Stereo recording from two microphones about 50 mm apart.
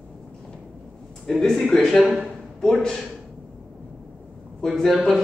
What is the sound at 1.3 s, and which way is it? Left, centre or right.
Speech, centre.